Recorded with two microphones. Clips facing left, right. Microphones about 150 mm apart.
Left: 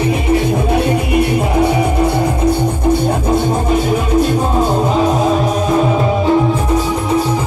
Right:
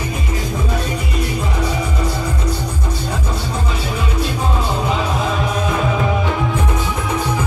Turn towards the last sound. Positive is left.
turn(degrees=40)  # may be behind; listen again after turning